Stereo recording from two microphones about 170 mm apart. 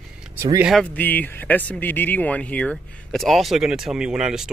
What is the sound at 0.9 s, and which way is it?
Speech, 10° left (ahead or behind).